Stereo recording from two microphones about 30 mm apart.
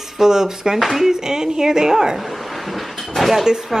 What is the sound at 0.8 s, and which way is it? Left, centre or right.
Speech, centre.